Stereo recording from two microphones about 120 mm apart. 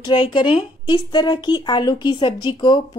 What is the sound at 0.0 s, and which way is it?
Speech, 40° left (ahead or behind).